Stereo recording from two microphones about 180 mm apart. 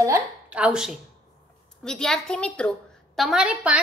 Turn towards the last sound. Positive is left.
turn(degrees=-5)  # may be behind; listen again after turning